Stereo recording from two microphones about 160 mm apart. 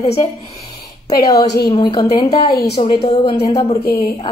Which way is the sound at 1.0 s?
25° left (ahead or behind).